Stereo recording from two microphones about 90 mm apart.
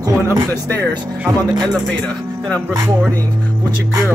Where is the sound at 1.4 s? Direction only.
50° right (ahead or behind).